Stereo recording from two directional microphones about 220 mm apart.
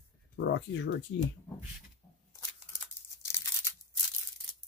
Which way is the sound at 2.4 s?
10° left (ahead or behind).